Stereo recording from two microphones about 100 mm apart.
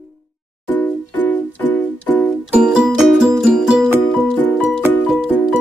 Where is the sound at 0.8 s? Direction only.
15° left (ahead or behind).